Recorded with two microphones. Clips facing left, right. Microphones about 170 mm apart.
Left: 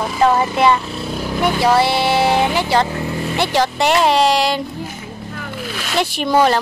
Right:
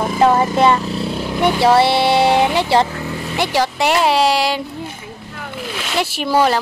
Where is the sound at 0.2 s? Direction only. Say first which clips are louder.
Right 1 dB; 25° right (ahead or behind).